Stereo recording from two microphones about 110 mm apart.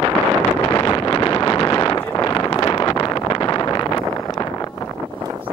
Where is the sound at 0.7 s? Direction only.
30° left (ahead or behind).